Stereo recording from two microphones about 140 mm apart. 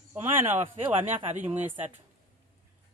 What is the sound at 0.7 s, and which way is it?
Speech, 40° right (ahead or behind).